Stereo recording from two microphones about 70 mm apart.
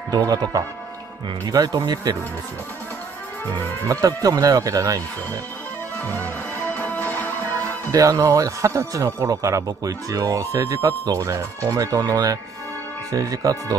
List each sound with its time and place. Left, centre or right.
0.3 s speech: right
1.4 s speech: right
3.9 s speech: right
5.9 s music: left
7.9 s speech: right
11.2 s speech: right
11.7 s speech: right